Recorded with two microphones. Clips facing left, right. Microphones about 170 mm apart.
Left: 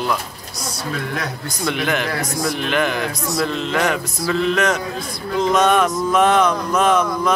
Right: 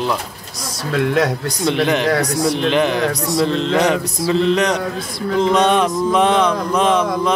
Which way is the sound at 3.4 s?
30° right (ahead or behind).